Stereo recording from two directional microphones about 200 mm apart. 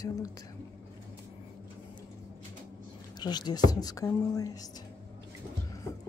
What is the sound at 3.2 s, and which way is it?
A woman's voice, 20° left (ahead or behind).